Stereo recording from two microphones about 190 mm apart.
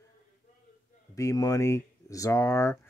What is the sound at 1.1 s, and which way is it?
Speech, 15° left (ahead or behind).